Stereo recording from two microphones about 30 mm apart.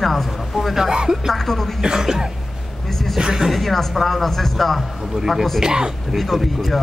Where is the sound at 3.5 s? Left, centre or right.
Centre.